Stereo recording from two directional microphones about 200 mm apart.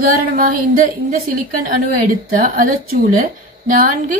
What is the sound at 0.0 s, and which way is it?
A woman's voice, 45° right (ahead or behind).